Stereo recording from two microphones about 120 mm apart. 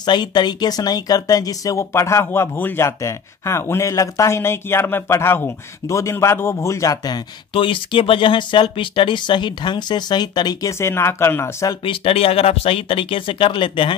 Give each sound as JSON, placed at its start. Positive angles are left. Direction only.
{"t": 0.0, "sound": "speech", "side_deg": 35}
{"t": 7.5, "sound": "speech", "side_deg": 45}
{"t": 10.8, "sound": "speech", "side_deg": 20}
{"t": 11.8, "sound": "speech", "side_deg": 50}